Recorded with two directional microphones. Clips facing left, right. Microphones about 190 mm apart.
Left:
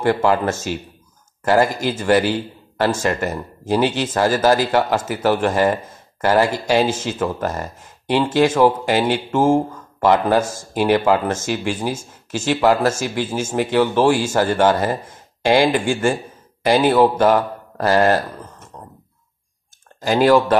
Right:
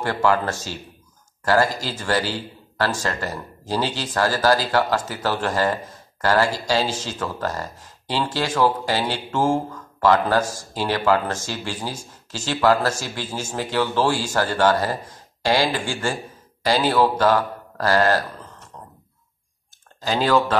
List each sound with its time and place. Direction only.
0.0 s speech: 15° left (ahead or behind)
20.0 s speech: 15° left (ahead or behind)